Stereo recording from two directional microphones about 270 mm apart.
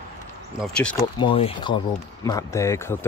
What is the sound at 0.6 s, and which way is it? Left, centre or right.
Speech, centre.